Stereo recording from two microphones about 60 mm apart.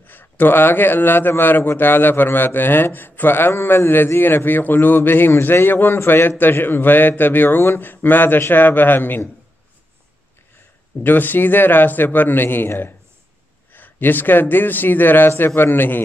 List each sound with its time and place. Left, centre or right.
0.0 s a man's voice: left
11.0 s a man's voice: left